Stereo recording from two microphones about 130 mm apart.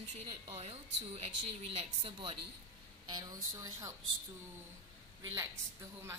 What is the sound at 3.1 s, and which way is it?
Speech, 30° right (ahead or behind).